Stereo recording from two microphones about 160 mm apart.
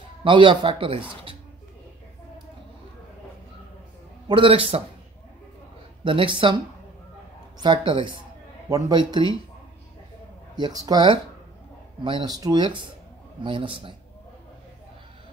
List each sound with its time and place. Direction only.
0.2 s speech: 30° right (ahead or behind)
4.3 s speech: 35° right (ahead or behind)
6.0 s speech: 30° right (ahead or behind)
7.6 s speech: 30° right (ahead or behind)
10.5 s speech: 25° right (ahead or behind)